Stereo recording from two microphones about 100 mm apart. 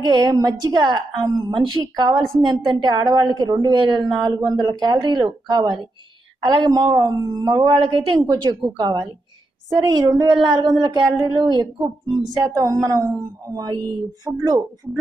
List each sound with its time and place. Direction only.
0.0 s a woman's voice: 45° right (ahead or behind)
7.8 s a woman's voice: 70° right (ahead or behind)
8.7 s speech: 40° right (ahead or behind)